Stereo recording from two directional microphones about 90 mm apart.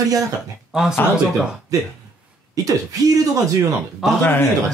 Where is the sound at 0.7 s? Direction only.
5° right (ahead or behind).